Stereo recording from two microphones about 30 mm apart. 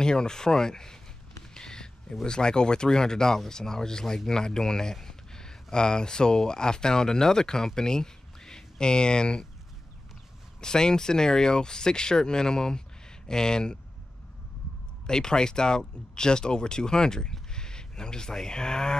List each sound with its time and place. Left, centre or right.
0.0 s speech: left
1.5 s a sound: left
2.2 s speech: left
10.6 s speech: left
15.0 s speech: left